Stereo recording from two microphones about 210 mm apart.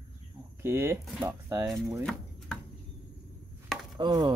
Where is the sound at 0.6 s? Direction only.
10° right (ahead or behind).